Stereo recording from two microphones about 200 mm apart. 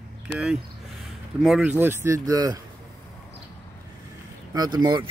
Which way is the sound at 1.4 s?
Centre (ahead or behind).